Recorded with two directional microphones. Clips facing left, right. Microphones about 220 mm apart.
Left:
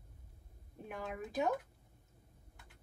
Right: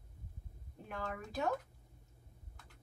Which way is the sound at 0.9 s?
15° left (ahead or behind).